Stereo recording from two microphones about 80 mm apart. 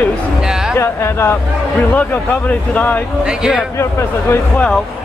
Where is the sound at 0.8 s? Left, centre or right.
Left.